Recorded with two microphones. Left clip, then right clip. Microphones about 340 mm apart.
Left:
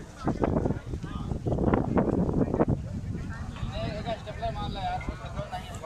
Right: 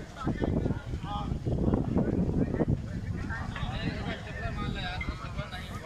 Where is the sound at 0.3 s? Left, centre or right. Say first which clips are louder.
Left 5 dB; left.